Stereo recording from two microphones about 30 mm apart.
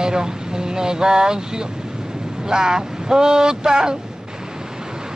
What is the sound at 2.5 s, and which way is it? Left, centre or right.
Speech, right.